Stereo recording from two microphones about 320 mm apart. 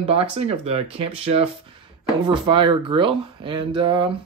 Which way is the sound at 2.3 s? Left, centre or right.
Centre.